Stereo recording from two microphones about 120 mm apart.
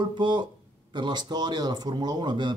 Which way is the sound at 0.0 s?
40° right (ahead or behind).